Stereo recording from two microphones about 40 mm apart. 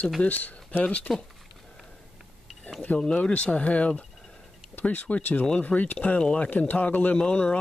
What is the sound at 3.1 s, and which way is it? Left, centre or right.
Speech, left.